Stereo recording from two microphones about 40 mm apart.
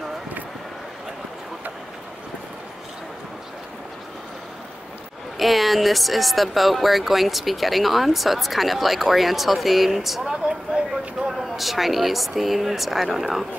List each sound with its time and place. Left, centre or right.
5.4 s speech: centre
10.2 s a sound: centre
11.2 s speech: centre